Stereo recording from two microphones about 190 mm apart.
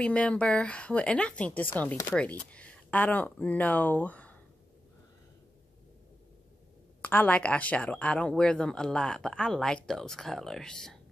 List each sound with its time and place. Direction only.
0.0 s speech: 5° left (ahead or behind)
7.0 s speech: 10° left (ahead or behind)